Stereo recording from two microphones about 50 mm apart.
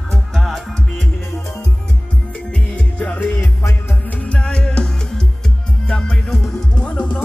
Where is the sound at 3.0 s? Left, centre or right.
Left.